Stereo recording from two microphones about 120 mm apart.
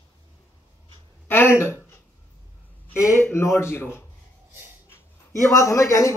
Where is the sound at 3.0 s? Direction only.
25° left (ahead or behind).